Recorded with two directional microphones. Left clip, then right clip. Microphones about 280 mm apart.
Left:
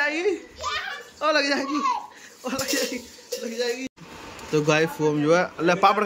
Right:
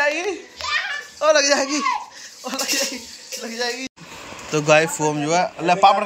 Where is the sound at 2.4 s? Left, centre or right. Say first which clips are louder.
Right 2 dB; centre.